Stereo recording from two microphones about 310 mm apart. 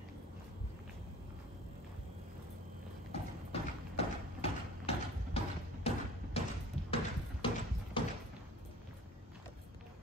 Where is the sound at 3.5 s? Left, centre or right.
Centre.